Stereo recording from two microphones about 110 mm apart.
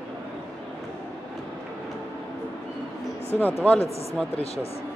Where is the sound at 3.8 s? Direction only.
65° left (ahead or behind).